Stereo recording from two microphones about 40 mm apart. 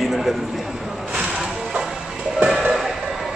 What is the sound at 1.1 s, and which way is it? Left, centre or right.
Music, right.